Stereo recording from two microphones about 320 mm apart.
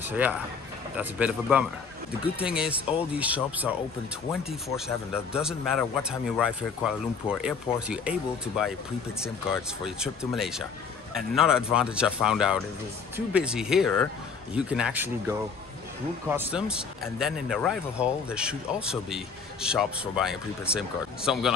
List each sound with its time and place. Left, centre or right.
0.0 s speech: centre
4.7 s speech: centre